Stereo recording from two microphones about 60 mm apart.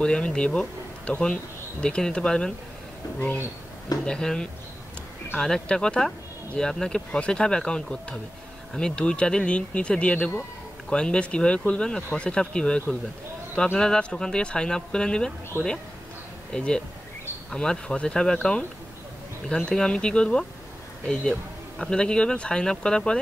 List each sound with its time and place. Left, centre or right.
0.0 s speech: centre
4.0 s speech: centre
15.5 s speech: left
16.5 s speech: centre